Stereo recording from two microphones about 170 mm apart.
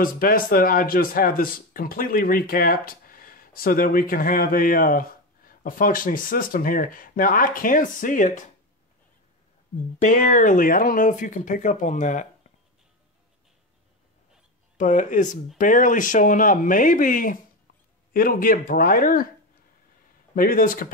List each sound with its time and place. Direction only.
0.0 s speech: 55° left (ahead or behind)
9.9 s speech: 50° left (ahead or behind)
14.8 s speech: 45° left (ahead or behind)
20.3 s speech: 55° left (ahead or behind)